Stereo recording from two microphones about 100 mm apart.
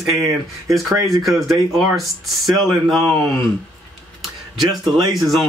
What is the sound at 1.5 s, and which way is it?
Speech, centre (ahead or behind).